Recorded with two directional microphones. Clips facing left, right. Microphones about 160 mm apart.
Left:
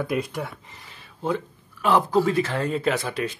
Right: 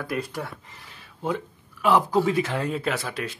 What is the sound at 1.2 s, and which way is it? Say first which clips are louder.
Speech: left 2 dB; 5° right (ahead or behind).